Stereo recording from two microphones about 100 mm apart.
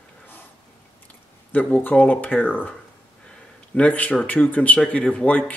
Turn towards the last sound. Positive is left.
turn(degrees=15)  # may be behind; listen again after turning